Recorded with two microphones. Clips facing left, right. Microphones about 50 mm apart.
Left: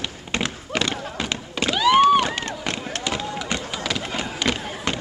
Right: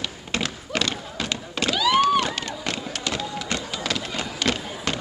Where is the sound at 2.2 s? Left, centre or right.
Left.